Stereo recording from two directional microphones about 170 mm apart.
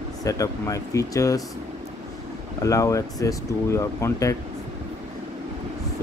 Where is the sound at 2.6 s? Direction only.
20° left (ahead or behind).